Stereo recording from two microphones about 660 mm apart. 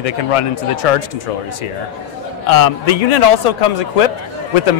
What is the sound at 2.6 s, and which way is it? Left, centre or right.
Speech, left.